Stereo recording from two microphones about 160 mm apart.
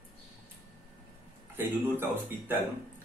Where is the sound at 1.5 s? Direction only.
15° right (ahead or behind).